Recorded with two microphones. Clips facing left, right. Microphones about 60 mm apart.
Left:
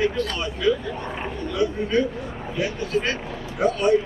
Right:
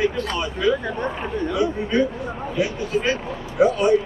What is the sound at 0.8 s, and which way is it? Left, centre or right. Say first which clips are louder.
Speech: right 5 dB; right.